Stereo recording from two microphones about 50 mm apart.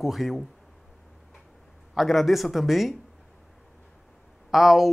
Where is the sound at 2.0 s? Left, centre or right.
Centre.